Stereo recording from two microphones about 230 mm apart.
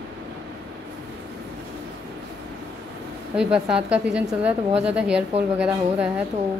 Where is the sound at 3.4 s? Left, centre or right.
Centre.